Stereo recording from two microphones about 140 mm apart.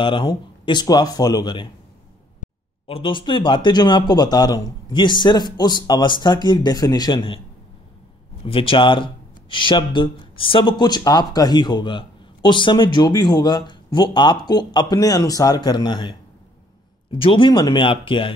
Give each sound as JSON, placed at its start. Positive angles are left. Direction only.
{"t": 0.0, "sound": "speech", "side_deg": 35}
{"t": 2.4, "sound": "a sound", "side_deg": 60}
{"t": 2.9, "sound": "speech", "side_deg": 35}
{"t": 8.5, "sound": "speech", "side_deg": 40}
{"t": 17.2, "sound": "speech", "side_deg": 35}